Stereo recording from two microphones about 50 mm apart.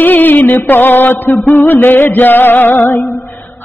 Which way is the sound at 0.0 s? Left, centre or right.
Left.